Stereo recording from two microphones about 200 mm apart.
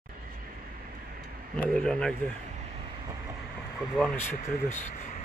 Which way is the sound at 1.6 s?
5° left (ahead or behind).